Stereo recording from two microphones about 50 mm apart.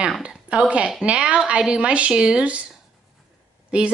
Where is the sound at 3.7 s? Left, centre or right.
Right.